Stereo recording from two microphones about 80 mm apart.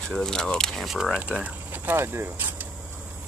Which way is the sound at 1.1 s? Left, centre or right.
Centre.